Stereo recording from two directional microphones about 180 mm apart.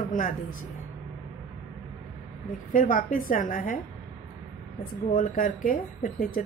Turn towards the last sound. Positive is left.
turn(degrees=50)  # may be behind; listen again after turning